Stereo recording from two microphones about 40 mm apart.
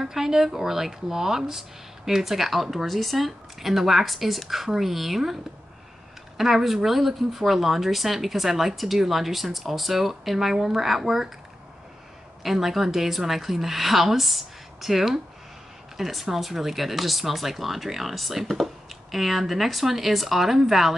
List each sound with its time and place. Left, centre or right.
0.0 s speech: centre
12.4 s speech: centre